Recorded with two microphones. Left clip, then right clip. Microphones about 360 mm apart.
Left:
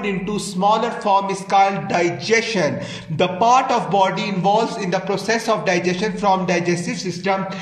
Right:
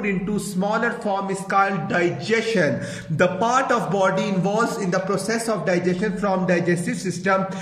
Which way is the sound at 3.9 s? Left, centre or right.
Left.